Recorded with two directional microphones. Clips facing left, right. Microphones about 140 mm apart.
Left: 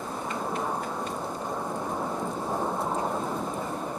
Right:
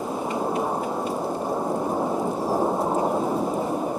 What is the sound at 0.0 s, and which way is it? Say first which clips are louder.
Thunder: right 6 dB; 20° right (ahead or behind).